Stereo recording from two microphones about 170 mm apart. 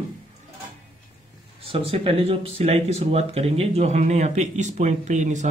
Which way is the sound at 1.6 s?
35° right (ahead or behind).